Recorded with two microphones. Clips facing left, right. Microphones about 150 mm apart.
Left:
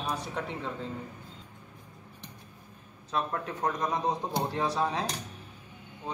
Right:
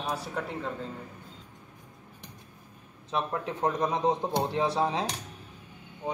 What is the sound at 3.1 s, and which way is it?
Speech, 20° right (ahead or behind).